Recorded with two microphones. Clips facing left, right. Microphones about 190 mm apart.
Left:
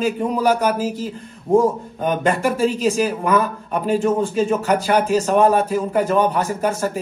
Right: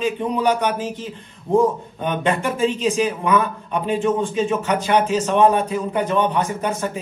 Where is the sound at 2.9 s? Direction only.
35° left (ahead or behind).